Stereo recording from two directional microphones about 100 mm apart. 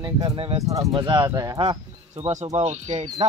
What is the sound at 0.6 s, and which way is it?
Speech, 35° right (ahead or behind).